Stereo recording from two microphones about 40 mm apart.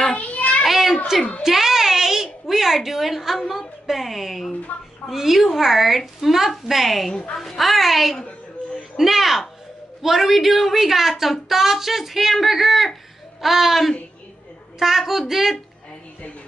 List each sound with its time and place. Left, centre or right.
0.2 s children playing: left
0.7 s a sound: centre
1.4 s music: centre
2.4 s a woman's voice: centre
4.7 s a woman's voice: left
5.1 s a woman's voice: centre